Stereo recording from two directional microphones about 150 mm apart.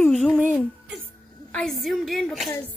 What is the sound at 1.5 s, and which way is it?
A woman's voice, 5° left (ahead or behind).